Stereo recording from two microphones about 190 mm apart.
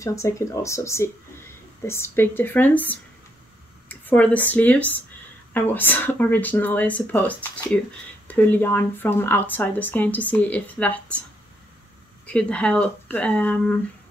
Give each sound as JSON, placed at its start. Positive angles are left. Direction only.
{"t": 0.0, "sound": "speech", "side_deg": 15}
{"t": 12.3, "sound": "speech", "side_deg": 5}